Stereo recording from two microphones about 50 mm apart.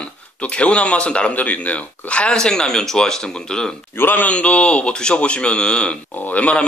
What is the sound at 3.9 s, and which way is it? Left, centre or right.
Speech, left.